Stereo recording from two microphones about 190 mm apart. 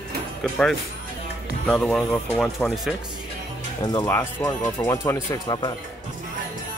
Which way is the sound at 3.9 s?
15° left (ahead or behind).